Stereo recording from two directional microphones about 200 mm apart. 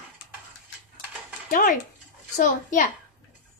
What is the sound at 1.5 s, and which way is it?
Speech, 40° left (ahead or behind).